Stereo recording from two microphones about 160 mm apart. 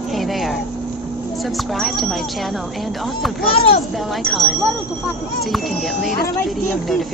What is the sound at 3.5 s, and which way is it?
Speech, 40° left (ahead or behind).